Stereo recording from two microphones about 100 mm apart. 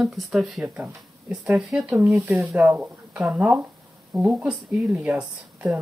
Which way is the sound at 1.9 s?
30° right (ahead or behind).